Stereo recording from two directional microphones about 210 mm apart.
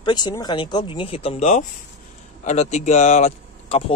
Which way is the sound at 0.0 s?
20° left (ahead or behind).